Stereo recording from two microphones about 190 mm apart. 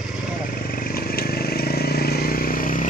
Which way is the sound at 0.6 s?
50° left (ahead or behind).